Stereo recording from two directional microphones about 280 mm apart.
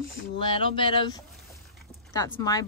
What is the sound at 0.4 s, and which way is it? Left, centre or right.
Speech, centre.